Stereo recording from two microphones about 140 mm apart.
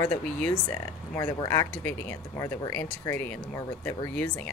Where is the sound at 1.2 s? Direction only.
25° left (ahead or behind).